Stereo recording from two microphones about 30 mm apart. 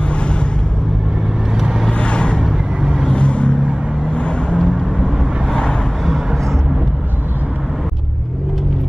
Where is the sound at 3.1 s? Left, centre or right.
Left.